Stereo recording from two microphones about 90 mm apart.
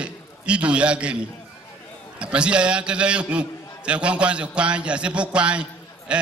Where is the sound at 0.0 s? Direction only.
15° right (ahead or behind).